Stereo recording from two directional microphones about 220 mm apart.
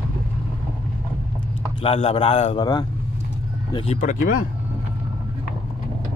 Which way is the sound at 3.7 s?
30° left (ahead or behind).